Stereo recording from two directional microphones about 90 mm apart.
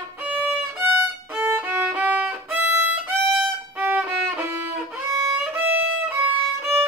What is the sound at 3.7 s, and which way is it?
Violin, 15° right (ahead or behind).